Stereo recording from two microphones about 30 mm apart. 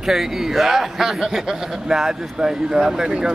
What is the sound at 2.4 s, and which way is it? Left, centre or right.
Speech, right.